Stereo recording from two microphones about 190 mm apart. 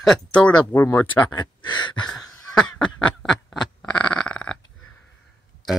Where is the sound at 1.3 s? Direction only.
25° left (ahead or behind).